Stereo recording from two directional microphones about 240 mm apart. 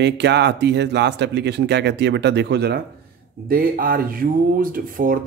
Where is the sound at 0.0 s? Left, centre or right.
Right.